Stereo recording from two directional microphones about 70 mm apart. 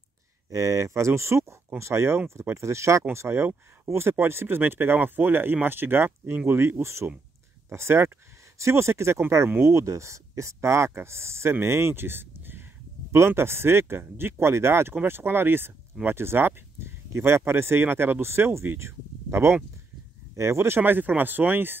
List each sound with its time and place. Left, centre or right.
0.5 s speech: right